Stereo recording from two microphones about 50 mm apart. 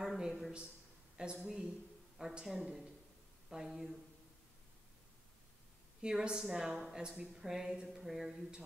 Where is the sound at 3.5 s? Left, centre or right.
Centre.